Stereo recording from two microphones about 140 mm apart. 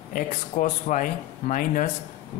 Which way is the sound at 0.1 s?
70° left (ahead or behind).